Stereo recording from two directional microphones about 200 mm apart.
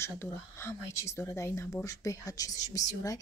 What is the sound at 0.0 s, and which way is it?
Speech, 10° left (ahead or behind).